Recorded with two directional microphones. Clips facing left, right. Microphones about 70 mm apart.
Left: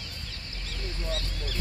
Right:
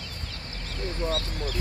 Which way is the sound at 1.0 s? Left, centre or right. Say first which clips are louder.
Right 6 dB; right.